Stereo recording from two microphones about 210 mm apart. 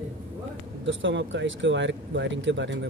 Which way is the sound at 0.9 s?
60° right (ahead or behind).